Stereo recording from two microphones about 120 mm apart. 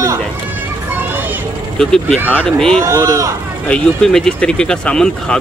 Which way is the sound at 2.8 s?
25° right (ahead or behind).